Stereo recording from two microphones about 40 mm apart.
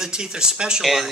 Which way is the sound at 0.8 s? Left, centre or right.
Centre.